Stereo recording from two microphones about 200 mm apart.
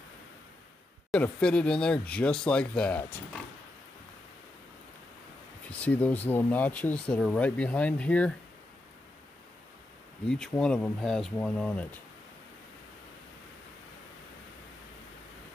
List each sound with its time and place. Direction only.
1.1 s speech: 5° left (ahead or behind)
5.7 s speech: 5° left (ahead or behind)
10.2 s speech: 5° left (ahead or behind)